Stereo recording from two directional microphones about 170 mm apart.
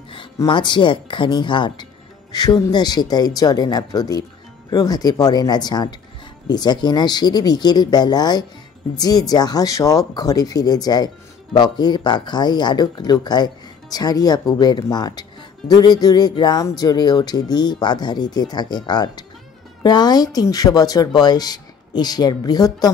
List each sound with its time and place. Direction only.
0.4 s speech: 25° left (ahead or behind)